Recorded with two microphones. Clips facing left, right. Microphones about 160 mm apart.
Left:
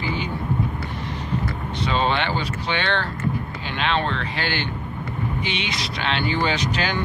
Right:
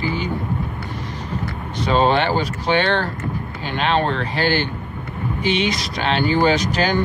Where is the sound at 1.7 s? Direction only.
40° right (ahead or behind).